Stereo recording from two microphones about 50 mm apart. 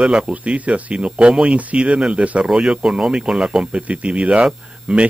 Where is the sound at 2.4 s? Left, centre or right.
Centre.